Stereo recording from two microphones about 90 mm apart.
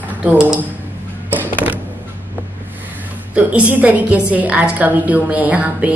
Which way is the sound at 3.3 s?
15° right (ahead or behind).